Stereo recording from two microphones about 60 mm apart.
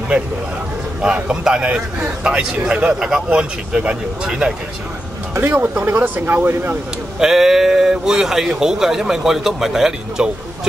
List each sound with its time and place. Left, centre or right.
1.0 s a man's voice: centre
5.3 s speech: right
7.2 s speech: centre